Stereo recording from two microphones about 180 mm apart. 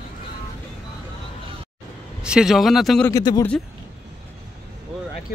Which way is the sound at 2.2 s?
5° right (ahead or behind).